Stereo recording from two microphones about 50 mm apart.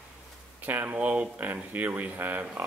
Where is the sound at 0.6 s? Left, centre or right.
Right.